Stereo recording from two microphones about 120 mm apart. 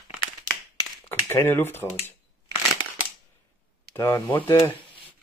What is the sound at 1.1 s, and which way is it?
Speech, 20° left (ahead or behind).